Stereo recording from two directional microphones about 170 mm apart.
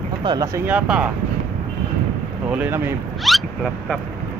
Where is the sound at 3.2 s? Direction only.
Centre (ahead or behind).